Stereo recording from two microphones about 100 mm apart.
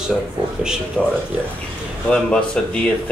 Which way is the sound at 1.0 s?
15° left (ahead or behind).